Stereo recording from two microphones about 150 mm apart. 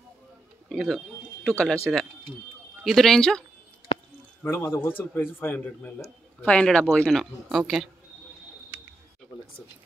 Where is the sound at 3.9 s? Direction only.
40° left (ahead or behind).